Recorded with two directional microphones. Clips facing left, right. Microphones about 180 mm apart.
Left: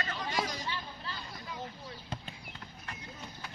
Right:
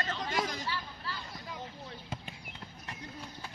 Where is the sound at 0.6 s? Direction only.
20° left (ahead or behind).